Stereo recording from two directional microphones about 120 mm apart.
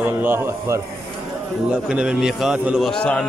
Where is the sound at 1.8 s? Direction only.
10° right (ahead or behind).